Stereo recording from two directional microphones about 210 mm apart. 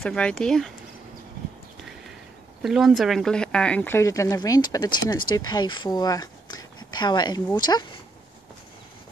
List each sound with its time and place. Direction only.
0.0 s speech: 5° left (ahead or behind)
2.6 s speech: centre (ahead or behind); by 7.8 s 20° left (ahead or behind)